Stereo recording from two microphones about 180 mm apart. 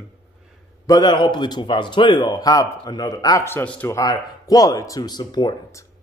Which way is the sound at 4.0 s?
20° left (ahead or behind).